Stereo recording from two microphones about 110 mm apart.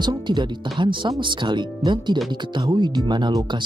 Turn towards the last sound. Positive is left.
turn(degrees=-40)  # may be behind; listen again after turning